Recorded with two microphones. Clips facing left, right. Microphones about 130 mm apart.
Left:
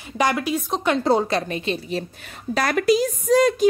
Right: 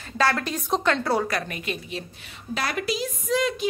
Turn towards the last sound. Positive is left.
turn(degrees=40)  # may be behind; listen again after turning